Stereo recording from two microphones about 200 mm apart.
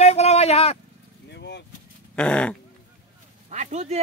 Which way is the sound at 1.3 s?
60° left (ahead or behind).